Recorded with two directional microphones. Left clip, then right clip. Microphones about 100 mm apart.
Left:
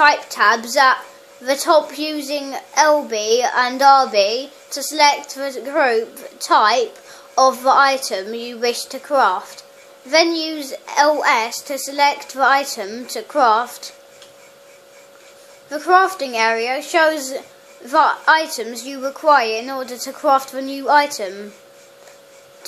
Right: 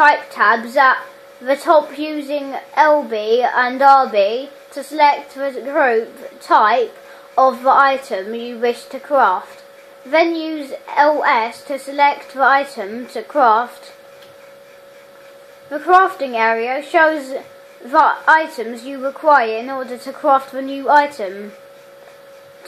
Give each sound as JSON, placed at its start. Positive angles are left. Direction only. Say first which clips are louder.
{"t": 0.0, "sound": "a woman's voice", "louder": "right 1 dB", "side_deg": 20}
{"t": 15.7, "sound": "a woman's voice", "louder": "right 2 dB", "side_deg": 20}